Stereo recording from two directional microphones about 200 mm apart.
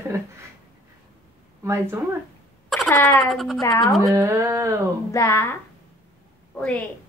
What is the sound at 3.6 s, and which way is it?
Speech, 15° left (ahead or behind).